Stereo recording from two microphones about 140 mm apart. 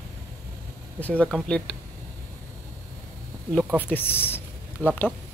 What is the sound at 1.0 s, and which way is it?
Speech, 10° left (ahead or behind).